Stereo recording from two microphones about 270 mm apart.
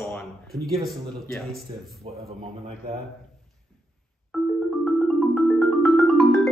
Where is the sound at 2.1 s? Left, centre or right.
Right.